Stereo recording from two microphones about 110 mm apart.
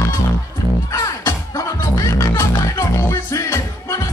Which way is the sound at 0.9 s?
30° left (ahead or behind).